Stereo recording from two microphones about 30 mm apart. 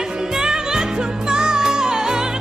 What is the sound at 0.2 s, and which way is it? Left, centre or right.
Music, centre.